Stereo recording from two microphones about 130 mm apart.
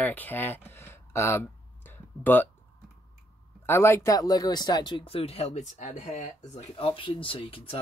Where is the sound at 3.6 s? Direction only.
20° left (ahead or behind).